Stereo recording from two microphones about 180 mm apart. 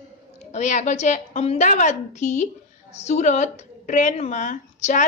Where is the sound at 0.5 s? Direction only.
40° left (ahead or behind).